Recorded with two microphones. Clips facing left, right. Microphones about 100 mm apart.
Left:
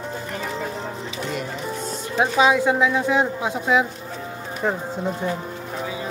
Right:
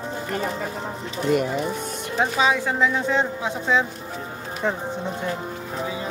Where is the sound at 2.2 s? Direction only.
15° left (ahead or behind).